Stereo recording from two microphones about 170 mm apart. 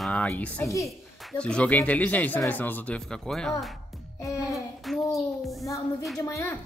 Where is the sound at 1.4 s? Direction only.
5° left (ahead or behind).